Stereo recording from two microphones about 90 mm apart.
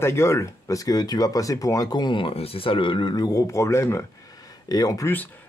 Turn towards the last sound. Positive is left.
turn(degrees=20)  # may be behind; listen again after turning